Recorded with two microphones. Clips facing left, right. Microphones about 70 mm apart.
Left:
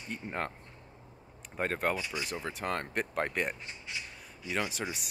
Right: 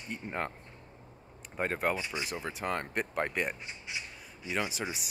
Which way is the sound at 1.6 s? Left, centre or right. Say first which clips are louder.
Even; centre.